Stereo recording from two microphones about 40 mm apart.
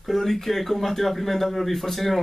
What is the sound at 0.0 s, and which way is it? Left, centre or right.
Speech, centre.